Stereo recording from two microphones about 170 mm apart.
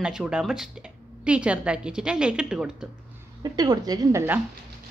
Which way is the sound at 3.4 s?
25° right (ahead or behind).